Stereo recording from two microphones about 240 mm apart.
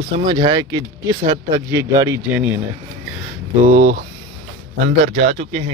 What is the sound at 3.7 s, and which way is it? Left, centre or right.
Speech, right.